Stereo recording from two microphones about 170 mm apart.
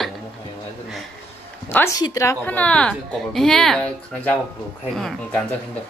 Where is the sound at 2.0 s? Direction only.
20° left (ahead or behind); by 4.3 s 5° left (ahead or behind).